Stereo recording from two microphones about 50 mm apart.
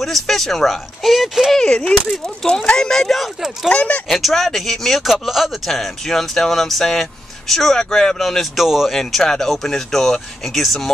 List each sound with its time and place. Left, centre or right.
0.0 s speech: centre
1.5 s speech: centre
3.7 s speech: left
4.1 s speech: centre
8.6 s speech: centre
8.9 s speech: centre